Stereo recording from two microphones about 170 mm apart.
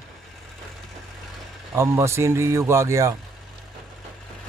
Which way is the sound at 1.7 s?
15° right (ahead or behind).